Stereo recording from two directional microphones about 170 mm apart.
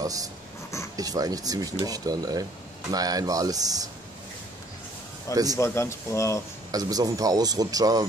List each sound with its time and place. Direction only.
0.0 s speech: 20° right (ahead or behind)
5.3 s speech: 20° right (ahead or behind)
5.6 s speech: 15° left (ahead or behind)
6.7 s speech: 20° right (ahead or behind)